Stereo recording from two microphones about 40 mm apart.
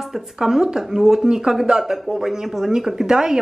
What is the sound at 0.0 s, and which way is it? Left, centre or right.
Speech, centre.